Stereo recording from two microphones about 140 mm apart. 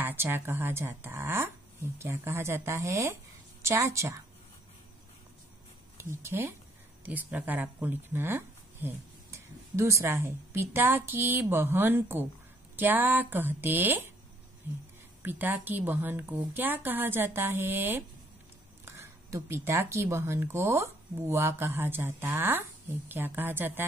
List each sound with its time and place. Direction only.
0.0 s speech: 15° right (ahead or behind)
5.9 s speech: 20° right (ahead or behind)